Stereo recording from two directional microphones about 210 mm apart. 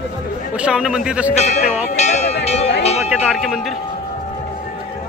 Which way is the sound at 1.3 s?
35° left (ahead or behind).